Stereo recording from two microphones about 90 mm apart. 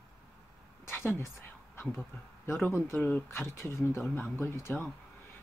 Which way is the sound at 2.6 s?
25° left (ahead or behind).